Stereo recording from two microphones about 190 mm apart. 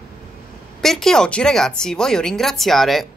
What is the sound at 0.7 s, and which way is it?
Speech, centre (ahead or behind).